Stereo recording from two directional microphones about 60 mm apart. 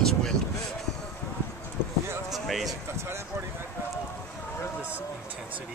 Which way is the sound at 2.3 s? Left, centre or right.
Centre.